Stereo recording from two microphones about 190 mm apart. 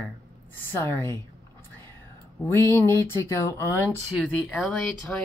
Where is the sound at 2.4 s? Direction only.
15° left (ahead or behind).